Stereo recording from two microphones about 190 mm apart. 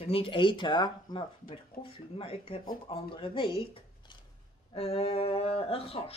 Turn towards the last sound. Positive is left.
turn(degrees=30)  # may be behind; listen again after turning